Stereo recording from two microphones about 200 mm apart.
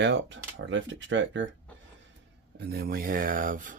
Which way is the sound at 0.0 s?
60° right (ahead or behind).